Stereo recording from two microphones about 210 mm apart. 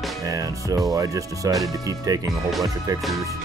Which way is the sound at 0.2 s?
15° right (ahead or behind).